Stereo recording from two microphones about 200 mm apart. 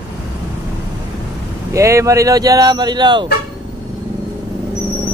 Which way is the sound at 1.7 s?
15° right (ahead or behind).